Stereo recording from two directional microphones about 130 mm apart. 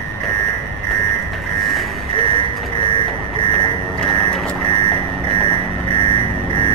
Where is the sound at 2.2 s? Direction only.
40° left (ahead or behind).